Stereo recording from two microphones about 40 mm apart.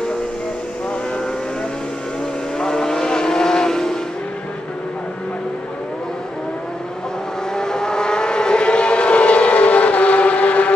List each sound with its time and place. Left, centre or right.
2.6 s vehicle: centre
7.5 s vehicle: centre; by 10.7 s left